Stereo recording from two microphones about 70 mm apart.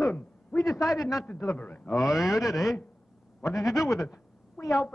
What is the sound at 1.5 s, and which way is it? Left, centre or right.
Speech, left.